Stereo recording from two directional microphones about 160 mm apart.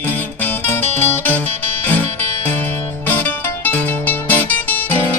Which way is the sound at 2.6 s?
10° left (ahead or behind).